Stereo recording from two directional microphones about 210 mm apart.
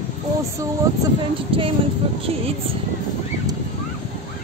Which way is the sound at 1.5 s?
25° right (ahead or behind).